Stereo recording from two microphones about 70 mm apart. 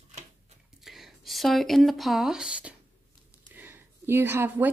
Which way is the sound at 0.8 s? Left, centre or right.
Centre.